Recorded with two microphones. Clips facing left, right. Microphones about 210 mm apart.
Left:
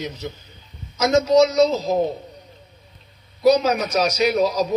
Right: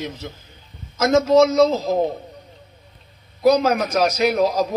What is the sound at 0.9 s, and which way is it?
Speech, 55° right (ahead or behind).